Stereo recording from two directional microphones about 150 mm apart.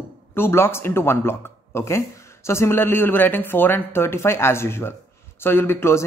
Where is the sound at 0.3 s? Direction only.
15° left (ahead or behind).